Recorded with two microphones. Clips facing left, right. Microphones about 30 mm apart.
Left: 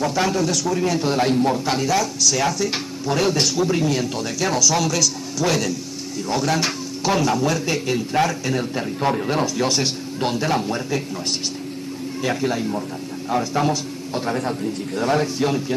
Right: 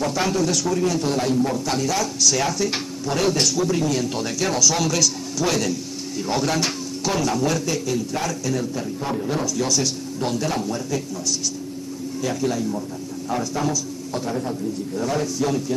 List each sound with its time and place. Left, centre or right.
0.0 s speech: centre
0.7 s a man's voice: left
1.2 s a man's voice: left
1.7 s a man's voice: centre
2.0 s speech: centre
4.1 s speech: centre
7.8 s a man's voice: left
9.0 s a man's voice: left
9.6 s a man's voice: left
15.0 s a man's voice: left